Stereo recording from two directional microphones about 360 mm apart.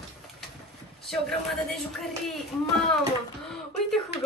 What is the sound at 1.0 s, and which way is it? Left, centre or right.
Speech, centre.